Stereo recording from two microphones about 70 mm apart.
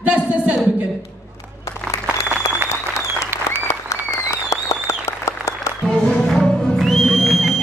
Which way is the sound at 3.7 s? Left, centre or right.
Left.